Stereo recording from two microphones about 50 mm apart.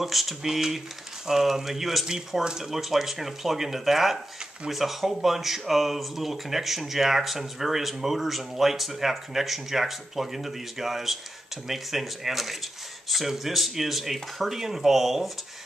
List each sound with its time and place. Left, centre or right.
0.0 s speech: centre